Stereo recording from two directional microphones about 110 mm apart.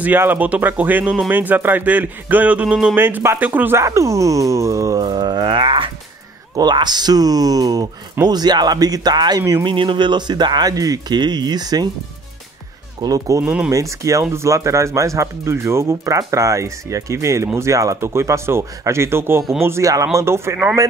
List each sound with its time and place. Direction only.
0.0 s a man's voice: 15° right (ahead or behind); by 11.9 s 35° right (ahead or behind)
13.0 s speech: 35° right (ahead or behind)
13.4 s a man's voice: 10° right (ahead or behind)
13.7 s speech: 30° right (ahead or behind)